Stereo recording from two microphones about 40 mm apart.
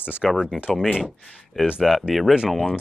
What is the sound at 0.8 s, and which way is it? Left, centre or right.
Speech, centre.